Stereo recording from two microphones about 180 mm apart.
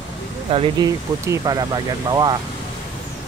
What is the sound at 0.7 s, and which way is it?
Speech, 20° right (ahead or behind).